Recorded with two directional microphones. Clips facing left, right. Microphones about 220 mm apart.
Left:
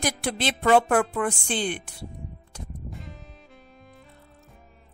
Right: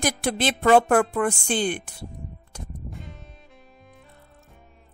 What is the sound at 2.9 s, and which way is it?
Music, centre (ahead or behind).